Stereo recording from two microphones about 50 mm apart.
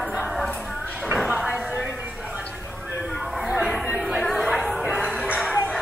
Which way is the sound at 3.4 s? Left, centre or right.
Centre.